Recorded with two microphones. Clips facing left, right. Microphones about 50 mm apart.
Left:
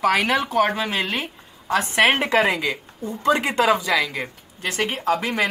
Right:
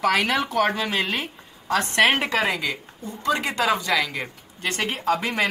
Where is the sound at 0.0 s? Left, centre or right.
Centre.